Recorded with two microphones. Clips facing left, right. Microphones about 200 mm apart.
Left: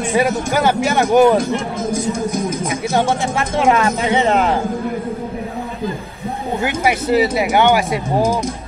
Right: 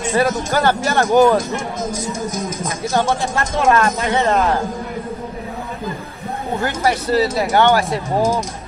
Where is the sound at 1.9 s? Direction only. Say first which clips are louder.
Left 5 dB; 50° left (ahead or behind).